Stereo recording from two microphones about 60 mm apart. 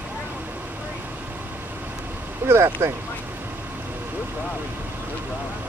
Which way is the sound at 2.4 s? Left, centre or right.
Right.